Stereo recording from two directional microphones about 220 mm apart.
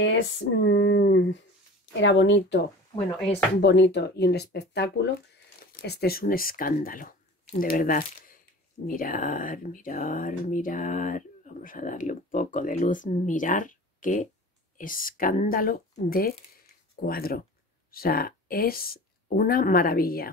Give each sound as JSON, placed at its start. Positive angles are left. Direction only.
{"t": 0.0, "sound": "speech", "side_deg": 55}
{"t": 3.6, "sound": "speech", "side_deg": 50}